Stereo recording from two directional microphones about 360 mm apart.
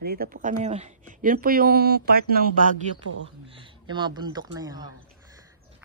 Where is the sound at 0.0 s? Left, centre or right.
Right.